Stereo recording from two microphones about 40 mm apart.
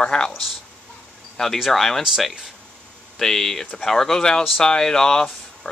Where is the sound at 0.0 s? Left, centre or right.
Centre.